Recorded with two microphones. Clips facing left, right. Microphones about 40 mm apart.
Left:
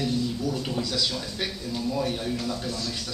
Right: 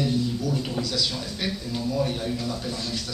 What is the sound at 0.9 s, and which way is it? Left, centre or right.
A man's voice, centre.